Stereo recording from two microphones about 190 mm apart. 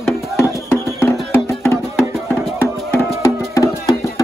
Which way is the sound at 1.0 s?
10° left (ahead or behind).